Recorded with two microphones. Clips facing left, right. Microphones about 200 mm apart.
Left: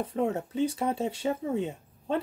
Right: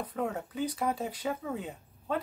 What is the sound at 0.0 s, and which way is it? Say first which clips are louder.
Speech: left 5 dB; 25° left (ahead or behind).